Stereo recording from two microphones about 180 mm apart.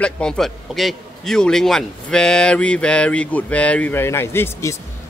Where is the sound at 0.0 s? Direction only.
5° left (ahead or behind).